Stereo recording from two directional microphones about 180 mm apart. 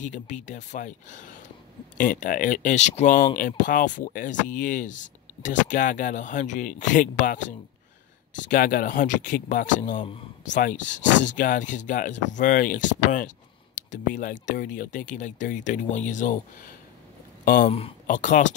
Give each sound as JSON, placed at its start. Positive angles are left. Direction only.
{"t": 0.0, "sound": "speech", "side_deg": 45}
{"t": 17.6, "sound": "speech", "side_deg": 30}
{"t": 18.0, "sound": "speech", "side_deg": 45}